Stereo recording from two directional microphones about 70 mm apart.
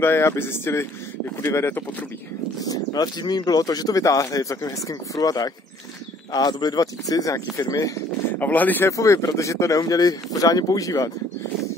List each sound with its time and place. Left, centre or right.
0.0 s speech: left
1.7 s speech: left
2.6 s speech: left
6.3 s speech: left
8.4 s speech: left
8.8 s speech: left